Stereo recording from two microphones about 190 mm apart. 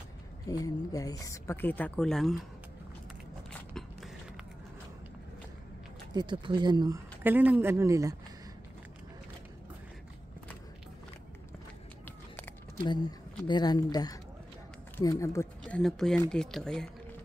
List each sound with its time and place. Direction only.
0.5 s a woman's voice: 20° left (ahead or behind); by 2.3 s centre (ahead or behind)
3.5 s biting: centre (ahead or behind)
6.1 s speech: 25° right (ahead or behind)
7.2 s speech: 10° right (ahead or behind)
13.5 s a woman's voice: 20° left (ahead or behind)
15.6 s speech: centre (ahead or behind)